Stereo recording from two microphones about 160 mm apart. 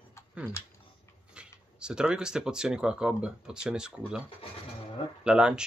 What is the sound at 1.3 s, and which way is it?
Speech, 5° right (ahead or behind).